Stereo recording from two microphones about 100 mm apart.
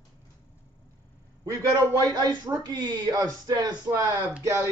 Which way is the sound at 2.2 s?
45° right (ahead or behind).